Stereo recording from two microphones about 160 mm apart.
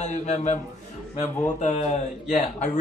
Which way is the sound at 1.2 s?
15° left (ahead or behind).